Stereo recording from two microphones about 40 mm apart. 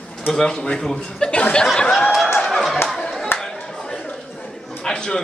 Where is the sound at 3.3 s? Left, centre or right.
Left.